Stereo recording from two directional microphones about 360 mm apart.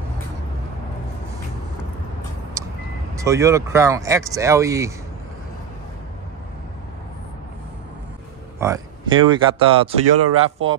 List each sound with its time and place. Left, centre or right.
3.2 s speech: centre
8.5 s speech: centre
10.0 s speech: right